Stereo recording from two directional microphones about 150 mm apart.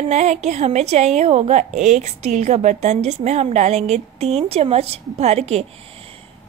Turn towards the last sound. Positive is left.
turn(degrees=-45)  # may be behind; listen again after turning